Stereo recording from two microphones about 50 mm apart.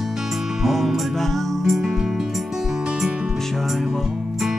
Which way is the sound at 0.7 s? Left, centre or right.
Centre.